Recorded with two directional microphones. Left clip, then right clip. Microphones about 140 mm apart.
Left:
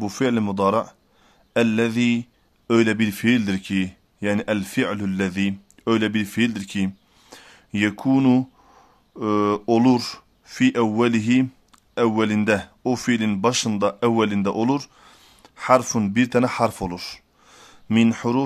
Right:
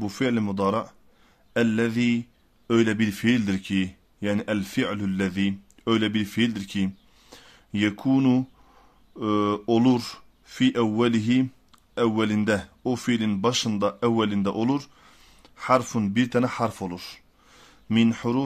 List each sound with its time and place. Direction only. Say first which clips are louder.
0.0 s speech: left 4 dB; 30° left (ahead or behind)